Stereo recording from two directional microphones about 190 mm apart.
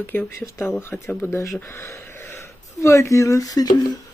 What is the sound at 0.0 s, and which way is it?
Speech, 10° left (ahead or behind).